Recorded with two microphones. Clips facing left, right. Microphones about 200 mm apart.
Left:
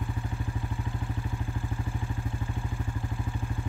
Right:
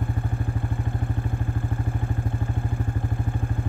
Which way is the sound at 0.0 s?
55° right (ahead or behind).